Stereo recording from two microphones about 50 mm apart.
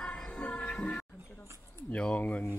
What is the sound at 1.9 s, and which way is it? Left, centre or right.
Speech, left.